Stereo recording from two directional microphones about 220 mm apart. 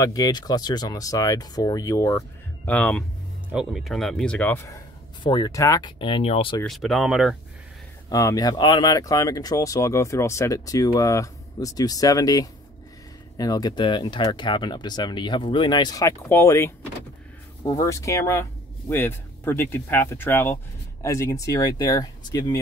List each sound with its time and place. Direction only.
0.0 s speech: 15° left (ahead or behind)
6.6 s speech: centre (ahead or behind)
8.1 s speech: 15° left (ahead or behind)